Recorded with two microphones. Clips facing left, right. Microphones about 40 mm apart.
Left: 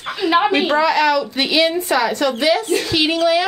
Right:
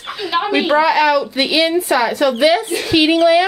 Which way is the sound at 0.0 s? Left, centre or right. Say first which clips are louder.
Left 3 dB; centre.